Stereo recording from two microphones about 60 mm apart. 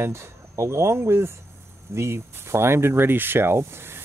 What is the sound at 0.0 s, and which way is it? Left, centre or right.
Speech, right.